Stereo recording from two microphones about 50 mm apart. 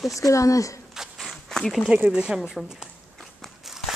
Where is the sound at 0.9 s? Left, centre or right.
Centre.